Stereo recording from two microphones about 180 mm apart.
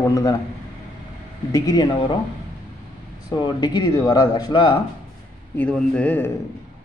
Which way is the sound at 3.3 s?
25° left (ahead or behind).